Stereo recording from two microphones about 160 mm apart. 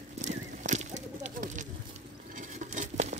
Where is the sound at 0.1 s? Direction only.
45° right (ahead or behind).